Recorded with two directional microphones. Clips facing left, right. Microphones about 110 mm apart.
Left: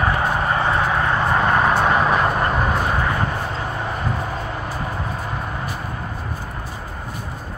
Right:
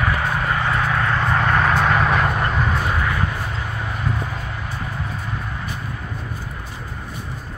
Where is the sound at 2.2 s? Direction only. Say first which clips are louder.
Left 2 dB; 40° left (ahead or behind).